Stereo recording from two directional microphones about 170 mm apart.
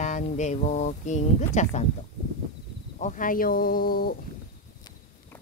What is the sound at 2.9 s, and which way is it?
Speech, 50° left (ahead or behind).